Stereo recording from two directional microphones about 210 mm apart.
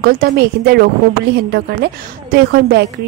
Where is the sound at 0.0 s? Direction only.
45° right (ahead or behind).